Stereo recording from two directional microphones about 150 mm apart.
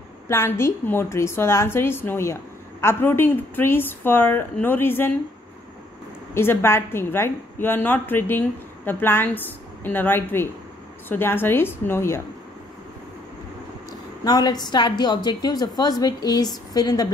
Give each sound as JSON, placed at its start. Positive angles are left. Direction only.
{"t": 0.3, "sound": "a woman's voice", "side_deg": 15}
{"t": 6.3, "sound": "a woman's voice", "side_deg": 15}
{"t": 14.2, "sound": "a woman's voice", "side_deg": 25}